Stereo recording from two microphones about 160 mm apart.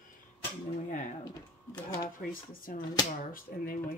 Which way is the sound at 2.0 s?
60° left (ahead or behind).